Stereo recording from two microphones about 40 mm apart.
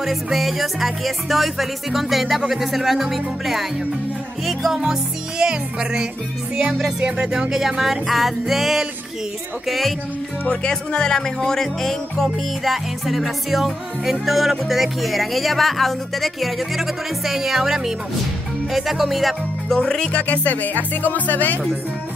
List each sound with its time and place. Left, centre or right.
0.0 s music: centre
10.5 s music: left; by 19.8 s centre
19.8 s music: centre
20.1 s speech: left